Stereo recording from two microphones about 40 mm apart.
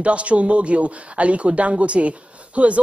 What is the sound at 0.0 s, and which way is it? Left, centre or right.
Speech, right.